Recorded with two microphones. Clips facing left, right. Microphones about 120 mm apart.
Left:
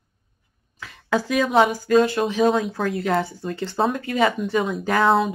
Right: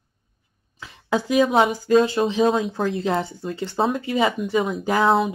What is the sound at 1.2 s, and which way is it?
Speech, 20° right (ahead or behind).